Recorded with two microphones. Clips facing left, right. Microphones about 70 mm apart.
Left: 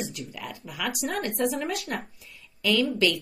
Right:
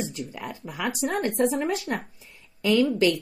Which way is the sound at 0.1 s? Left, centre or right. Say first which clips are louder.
Right 3 dB; right.